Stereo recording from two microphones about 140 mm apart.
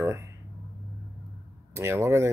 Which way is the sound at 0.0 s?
20° right (ahead or behind).